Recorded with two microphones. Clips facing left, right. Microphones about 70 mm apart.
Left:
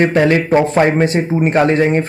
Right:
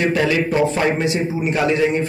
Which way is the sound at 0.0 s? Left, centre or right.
Left.